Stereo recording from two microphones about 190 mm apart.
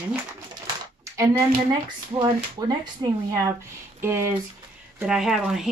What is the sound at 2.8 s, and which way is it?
Speech, 20° right (ahead or behind).